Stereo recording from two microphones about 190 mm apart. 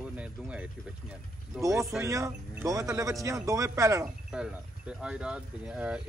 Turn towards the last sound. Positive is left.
turn(degrees=-5)  # may be behind; listen again after turning